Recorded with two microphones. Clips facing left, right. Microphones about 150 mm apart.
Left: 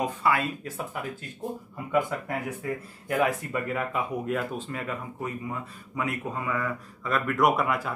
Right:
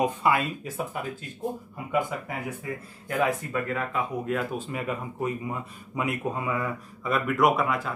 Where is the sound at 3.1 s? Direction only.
10° left (ahead or behind).